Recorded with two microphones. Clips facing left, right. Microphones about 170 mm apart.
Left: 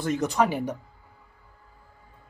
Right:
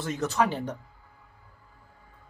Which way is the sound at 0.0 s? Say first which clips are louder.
Left 3 dB; 15° left (ahead or behind).